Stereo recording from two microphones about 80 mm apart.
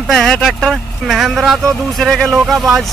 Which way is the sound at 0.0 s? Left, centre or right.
Centre.